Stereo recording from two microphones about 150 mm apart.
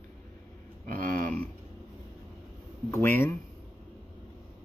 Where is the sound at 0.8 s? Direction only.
65° right (ahead or behind).